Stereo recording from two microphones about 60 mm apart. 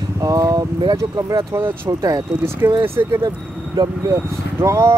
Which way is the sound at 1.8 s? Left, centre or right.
Right.